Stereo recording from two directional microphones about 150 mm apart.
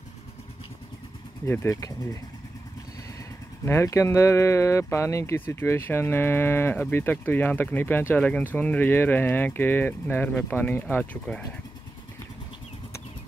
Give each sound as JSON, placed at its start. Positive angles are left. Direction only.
{"t": 1.4, "sound": "speech", "side_deg": 15}
{"t": 3.6, "sound": "speech", "side_deg": 20}